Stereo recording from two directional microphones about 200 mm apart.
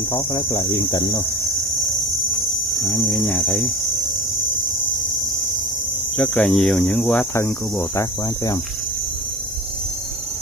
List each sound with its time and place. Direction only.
0.1 s speech: 15° left (ahead or behind)
0.5 s speech: 25° left (ahead or behind)
3.0 s speech: 10° left (ahead or behind)
6.1 s speech: 10° left (ahead or behind)
7.3 s speech: 15° left (ahead or behind)